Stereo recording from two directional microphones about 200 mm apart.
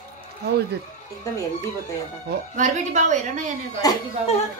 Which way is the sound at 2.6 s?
40° right (ahead or behind).